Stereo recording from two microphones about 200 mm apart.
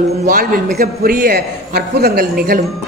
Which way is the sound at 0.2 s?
45° right (ahead or behind).